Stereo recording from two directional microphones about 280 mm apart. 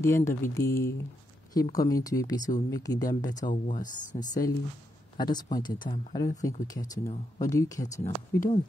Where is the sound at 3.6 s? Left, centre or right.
Left.